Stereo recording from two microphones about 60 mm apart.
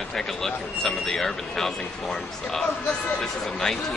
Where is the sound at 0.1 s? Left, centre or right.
Centre.